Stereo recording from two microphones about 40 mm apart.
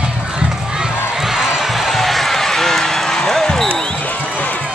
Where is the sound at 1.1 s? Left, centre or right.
Centre.